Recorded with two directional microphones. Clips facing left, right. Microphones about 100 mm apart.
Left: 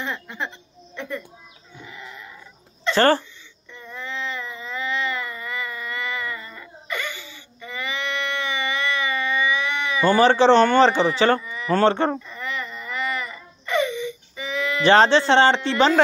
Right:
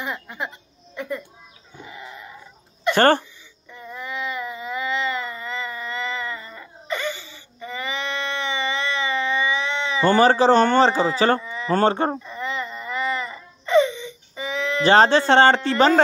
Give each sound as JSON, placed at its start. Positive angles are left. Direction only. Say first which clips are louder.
{"t": 0.0, "sound": "speech", "louder": "even", "side_deg": -10}
{"t": 0.9, "sound": "bird", "louder": "right 2 dB", "side_deg": -15}
{"t": 1.9, "sound": "sheep", "louder": "right 2 dB", "side_deg": -20}
{"t": 2.9, "sound": "throat clearing", "louder": "right 1 dB", "side_deg": -15}
{"t": 3.7, "sound": "baby cry", "louder": "right 1 dB", "side_deg": -15}
{"t": 10.1, "sound": "speech", "louder": "left 1 dB", "side_deg": -40}
{"t": 12.2, "sound": "wail", "louder": "right 2 dB", "side_deg": -20}